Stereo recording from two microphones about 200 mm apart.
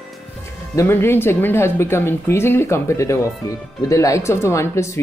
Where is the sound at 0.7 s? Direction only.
10° left (ahead or behind).